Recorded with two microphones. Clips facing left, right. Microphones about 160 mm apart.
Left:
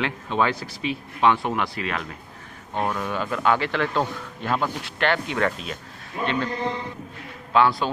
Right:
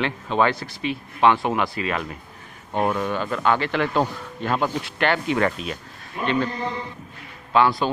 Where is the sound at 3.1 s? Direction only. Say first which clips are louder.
Right 1 dB; centre (ahead or behind).